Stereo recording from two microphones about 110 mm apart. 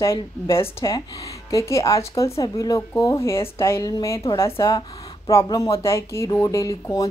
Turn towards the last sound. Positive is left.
turn(degrees=30)  # may be behind; listen again after turning